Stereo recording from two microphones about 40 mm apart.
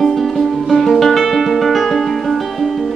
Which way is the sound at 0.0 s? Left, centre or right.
Centre.